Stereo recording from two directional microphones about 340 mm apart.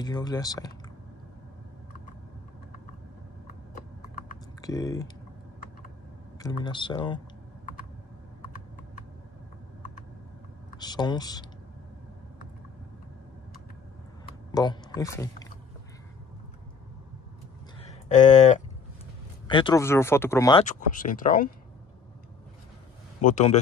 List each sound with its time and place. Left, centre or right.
0.0 s speech: centre
4.6 s speech: centre
6.4 s speech: centre
10.8 s speech: centre
14.2 s speech: centre
17.7 s a sound: centre
19.5 s speech: centre
20.6 s speech: left
23.2 s speech: centre